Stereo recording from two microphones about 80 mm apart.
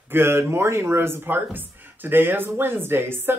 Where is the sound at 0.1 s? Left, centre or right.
Right.